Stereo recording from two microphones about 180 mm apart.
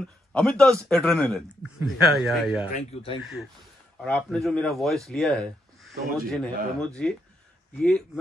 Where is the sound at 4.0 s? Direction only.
5° left (ahead or behind).